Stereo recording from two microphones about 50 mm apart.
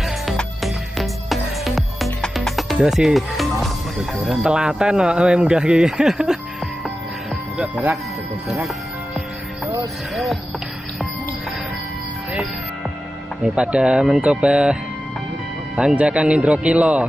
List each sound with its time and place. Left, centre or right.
0.6 s music: centre
2.8 s speech: centre
4.5 s a man's voice: centre
8.5 s music: centre
10.1 s a sound: centre
13.4 s a man's voice: centre
14.2 s speech: right
16.0 s speech: right